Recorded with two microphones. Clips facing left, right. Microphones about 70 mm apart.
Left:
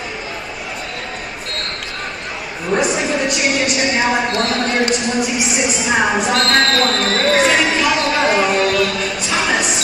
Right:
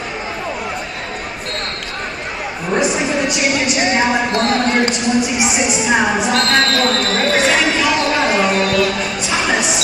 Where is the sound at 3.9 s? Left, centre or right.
Centre.